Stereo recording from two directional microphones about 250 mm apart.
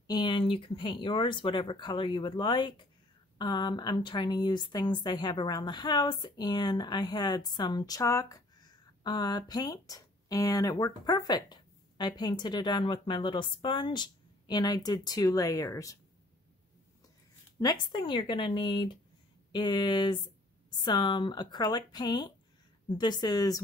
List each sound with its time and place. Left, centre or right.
0.0 s a woman's voice: centre
17.6 s a woman's voice: centre